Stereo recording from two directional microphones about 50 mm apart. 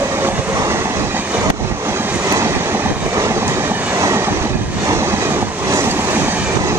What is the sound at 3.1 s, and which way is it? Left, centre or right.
Vehicle, right.